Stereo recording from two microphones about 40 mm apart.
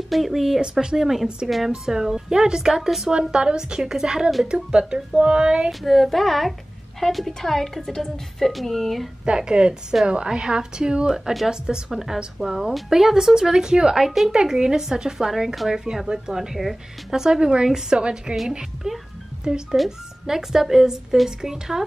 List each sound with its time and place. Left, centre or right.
0.1 s a woman's voice: centre
0.6 s speech: centre
3.1 s speech: right
5.7 s a woman's voice: centre
9.2 s speech: right
11.1 s speech: centre